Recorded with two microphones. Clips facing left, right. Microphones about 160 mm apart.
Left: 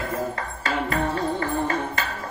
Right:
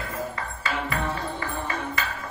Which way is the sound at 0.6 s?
40° left (ahead or behind).